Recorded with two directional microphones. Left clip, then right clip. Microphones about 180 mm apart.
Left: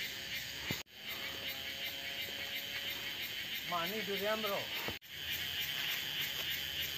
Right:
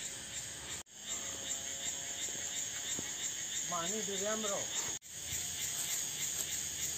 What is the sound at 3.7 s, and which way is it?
Speech, 45° right (ahead or behind).